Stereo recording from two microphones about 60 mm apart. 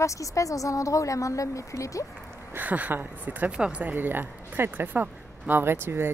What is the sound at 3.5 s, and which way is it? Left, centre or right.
Speech, centre.